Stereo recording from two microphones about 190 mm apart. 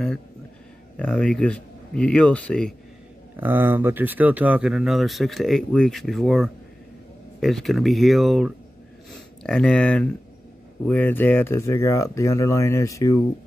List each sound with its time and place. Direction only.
0.9 s speech: 5° left (ahead or behind)
3.3 s speech: 10° right (ahead or behind); by 13.1 s 15° left (ahead or behind)